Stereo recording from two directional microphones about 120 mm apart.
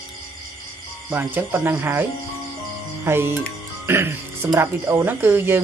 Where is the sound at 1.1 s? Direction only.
15° right (ahead or behind).